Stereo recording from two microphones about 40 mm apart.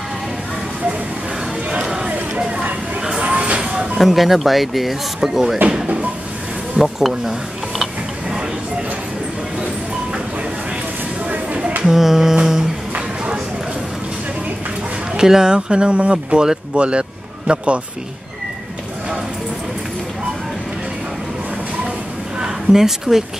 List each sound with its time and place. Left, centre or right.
2.0 s a sound: right
4.0 s speech: centre
6.8 s speech: centre
11.8 s music: centre
12.9 s a sound: right
15.1 s a man's voice: centre; by 17.6 s right
22.4 s speech: centre